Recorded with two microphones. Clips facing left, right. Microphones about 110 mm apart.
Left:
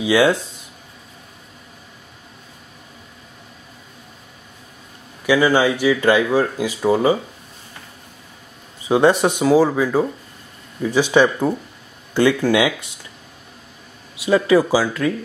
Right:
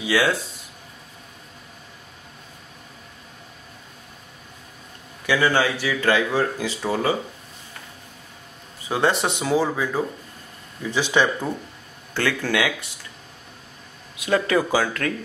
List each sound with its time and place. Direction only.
0.0 s speech: 20° left (ahead or behind)
5.2 s speech: 15° left (ahead or behind)
8.8 s speech: 15° left (ahead or behind)
14.1 s speech: 5° left (ahead or behind)